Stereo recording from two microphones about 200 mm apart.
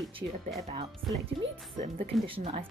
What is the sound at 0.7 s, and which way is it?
Speech, 25° right (ahead or behind).